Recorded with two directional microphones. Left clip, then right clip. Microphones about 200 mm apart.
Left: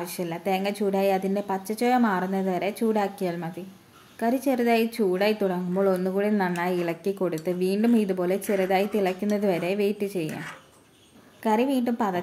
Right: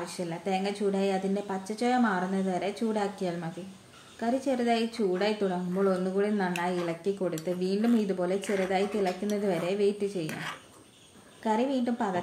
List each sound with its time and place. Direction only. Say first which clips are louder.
0.0 s speech: left 4 dB; 35° left (ahead or behind)
11.4 s speech: left 4 dB; 35° left (ahead or behind)